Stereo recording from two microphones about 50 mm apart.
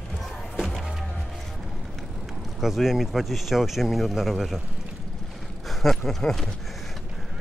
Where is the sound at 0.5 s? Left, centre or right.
Centre.